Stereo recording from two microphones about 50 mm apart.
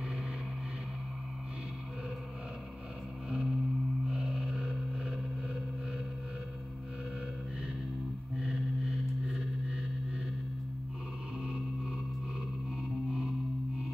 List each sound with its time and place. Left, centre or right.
3.3 s music: centre
8.4 s music: centre
13.1 s music: centre